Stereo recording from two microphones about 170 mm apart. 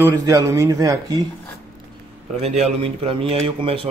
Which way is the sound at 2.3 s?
40° right (ahead or behind).